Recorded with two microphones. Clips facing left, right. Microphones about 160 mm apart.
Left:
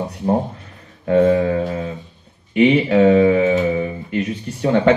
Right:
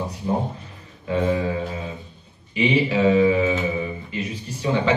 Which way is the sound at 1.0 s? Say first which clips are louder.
Left 8 dB; 55° left (ahead or behind).